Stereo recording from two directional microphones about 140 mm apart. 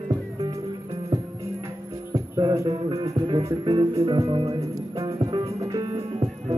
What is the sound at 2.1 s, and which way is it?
Music, 30° right (ahead or behind).